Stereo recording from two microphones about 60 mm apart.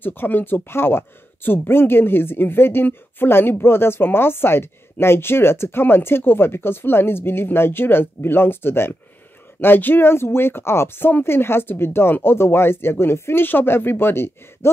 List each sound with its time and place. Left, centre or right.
0.0 s speech: left